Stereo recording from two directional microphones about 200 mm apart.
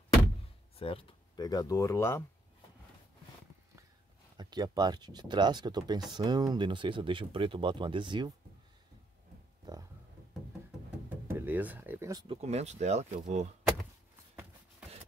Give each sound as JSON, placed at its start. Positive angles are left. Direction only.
{"t": 0.7, "sound": "speech", "side_deg": 25}
{"t": 4.4, "sound": "speech", "side_deg": -20}
{"t": 11.1, "sound": "music", "side_deg": -10}
{"t": 12.4, "sound": "speech", "side_deg": -35}